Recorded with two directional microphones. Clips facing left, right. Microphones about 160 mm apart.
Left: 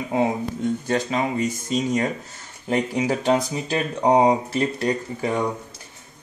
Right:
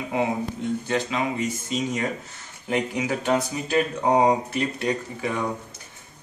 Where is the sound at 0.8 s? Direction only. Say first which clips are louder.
Left 1 dB; 40° left (ahead or behind).